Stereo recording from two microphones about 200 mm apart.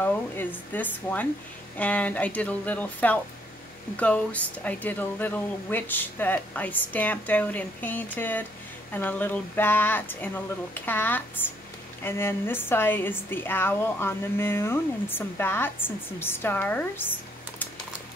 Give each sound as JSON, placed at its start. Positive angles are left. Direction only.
{"t": 0.0, "sound": "a woman's voice", "side_deg": 10}